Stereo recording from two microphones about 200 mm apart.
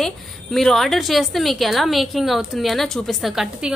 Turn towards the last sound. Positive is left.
turn(degrees=0)  # may be behind; listen again after turning